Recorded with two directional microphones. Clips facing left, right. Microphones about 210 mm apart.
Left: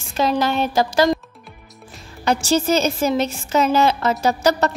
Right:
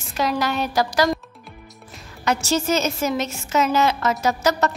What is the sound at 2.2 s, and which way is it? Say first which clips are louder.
A woman's voice: left 3 dB; 30° left (ahead or behind).